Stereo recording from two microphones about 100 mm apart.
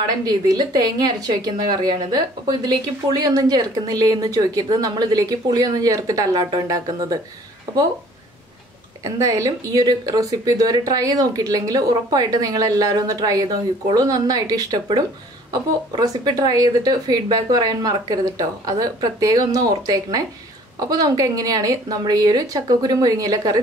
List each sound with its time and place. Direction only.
0.2 s a woman's voice: 40° right (ahead or behind)
9.0 s a woman's voice: 30° right (ahead or behind)